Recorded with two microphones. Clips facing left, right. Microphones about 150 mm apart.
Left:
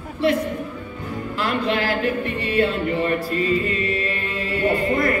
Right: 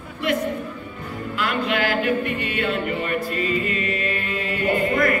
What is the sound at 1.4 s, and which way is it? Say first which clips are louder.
Music: left 1 dB; 35° left (ahead or behind).